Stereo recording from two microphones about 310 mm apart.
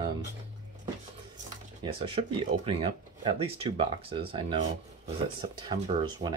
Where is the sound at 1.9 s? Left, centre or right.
Centre.